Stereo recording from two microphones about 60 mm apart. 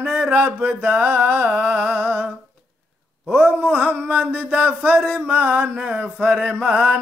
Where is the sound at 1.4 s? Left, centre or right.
Centre.